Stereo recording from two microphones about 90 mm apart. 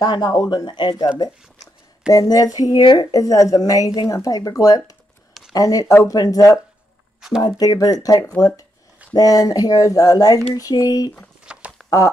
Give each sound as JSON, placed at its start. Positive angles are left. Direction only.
{"t": 0.0, "sound": "speech", "side_deg": 50}
{"t": 2.0, "sound": "speech", "side_deg": 45}
{"t": 2.8, "sound": "speech", "side_deg": 55}
{"t": 3.1, "sound": "speech", "side_deg": 40}
{"t": 7.2, "sound": "speech", "side_deg": -5}
{"t": 7.4, "sound": "speech", "side_deg": 50}
{"t": 11.5, "sound": "a sound", "side_deg": -10}